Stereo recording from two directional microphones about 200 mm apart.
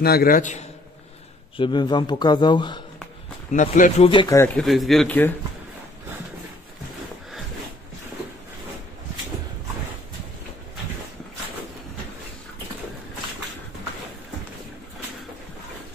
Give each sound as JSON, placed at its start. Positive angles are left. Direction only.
{"t": 0.0, "sound": "a man's voice", "side_deg": 50}
{"t": 1.6, "sound": "speech", "side_deg": 25}
{"t": 3.5, "sound": "speech", "side_deg": 40}
{"t": 4.1, "sound": "speech", "side_deg": 25}
{"t": 4.6, "sound": "speech", "side_deg": 0}